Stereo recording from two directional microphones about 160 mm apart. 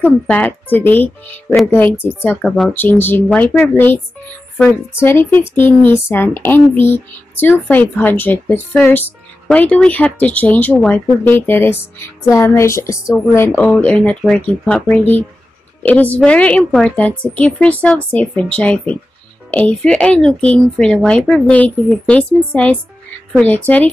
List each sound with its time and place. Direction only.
0.0 s speech: 10° left (ahead or behind)
2.4 s speech: centre (ahead or behind)
2.7 s speech: 10° left (ahead or behind)
5.0 s speech: 15° left (ahead or behind)